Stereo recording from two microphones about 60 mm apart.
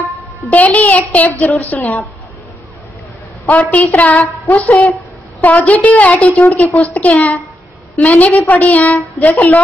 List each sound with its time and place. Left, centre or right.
0.5 s a child's voice: left
3.7 s a woman's voice: left